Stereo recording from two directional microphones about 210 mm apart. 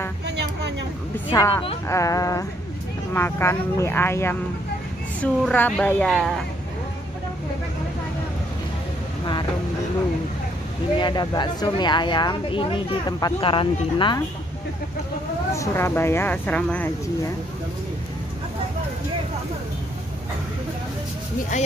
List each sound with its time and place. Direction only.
1.1 s a woman's voice: 15° left (ahead or behind)
11.0 s speech: 20° left (ahead or behind)
15.5 s speech: 15° left (ahead or behind)